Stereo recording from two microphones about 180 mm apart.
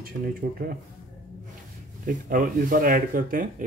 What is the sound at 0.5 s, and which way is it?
Speech, 55° right (ahead or behind).